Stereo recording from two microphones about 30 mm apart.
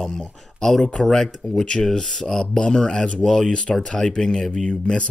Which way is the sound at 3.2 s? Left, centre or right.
Centre.